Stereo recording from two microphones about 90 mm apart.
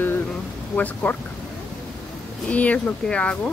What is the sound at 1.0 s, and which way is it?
Speech, 15° left (ahead or behind).